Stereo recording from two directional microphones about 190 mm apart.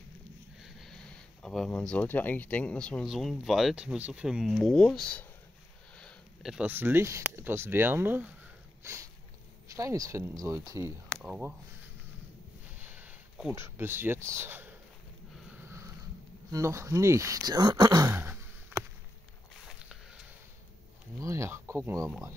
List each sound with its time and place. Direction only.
0.6 s speech: centre (ahead or behind)
8.8 s a sound: 15° right (ahead or behind)
9.8 s speech: 15° right (ahead or behind)
11.1 s speech: 5° right (ahead or behind)
12.8 s a sound: 10° right (ahead or behind)
13.6 s speech: 10° right (ahead or behind)
15.3 s sniff: 10° right (ahead or behind)
16.5 s speech: 15° right (ahead or behind)
19.5 s a sound: centre (ahead or behind)
21.2 s speech: 15° right (ahead or behind)